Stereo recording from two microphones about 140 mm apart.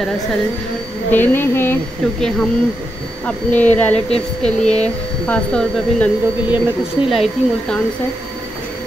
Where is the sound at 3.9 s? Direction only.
45° left (ahead or behind).